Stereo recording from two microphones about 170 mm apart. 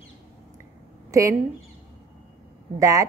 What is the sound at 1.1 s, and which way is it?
Speech, 20° right (ahead or behind).